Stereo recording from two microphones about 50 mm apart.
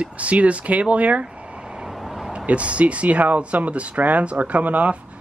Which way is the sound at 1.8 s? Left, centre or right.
Centre.